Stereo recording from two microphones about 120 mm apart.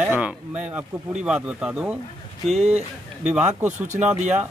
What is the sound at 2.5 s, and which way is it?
Speech, 70° right (ahead or behind).